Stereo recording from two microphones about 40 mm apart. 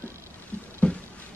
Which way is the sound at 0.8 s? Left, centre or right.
Left.